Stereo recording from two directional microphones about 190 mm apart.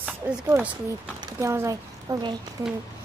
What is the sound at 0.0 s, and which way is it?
A woman's voice, 5° right (ahead or behind).